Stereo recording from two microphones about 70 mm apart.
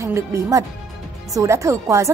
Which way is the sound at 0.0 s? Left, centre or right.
Right.